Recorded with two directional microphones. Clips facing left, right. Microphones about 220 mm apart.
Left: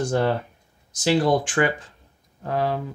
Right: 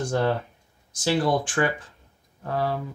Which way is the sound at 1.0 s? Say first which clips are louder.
Left 3 dB; 15° left (ahead or behind).